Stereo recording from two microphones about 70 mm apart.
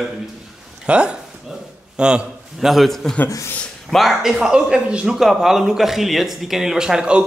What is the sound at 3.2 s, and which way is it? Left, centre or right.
Speech, left.